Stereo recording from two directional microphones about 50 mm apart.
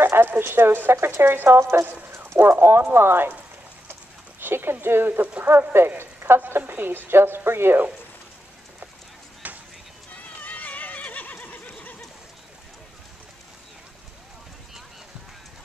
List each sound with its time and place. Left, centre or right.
0.0 s a sound: right
0.3 s speech: right
4.4 s speech: right
5.2 s speech: right
5.5 s speech: right
9.4 s a sound: right
10.1 s neigh: left